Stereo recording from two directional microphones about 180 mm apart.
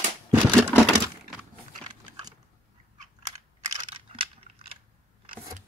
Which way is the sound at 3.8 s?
30° right (ahead or behind).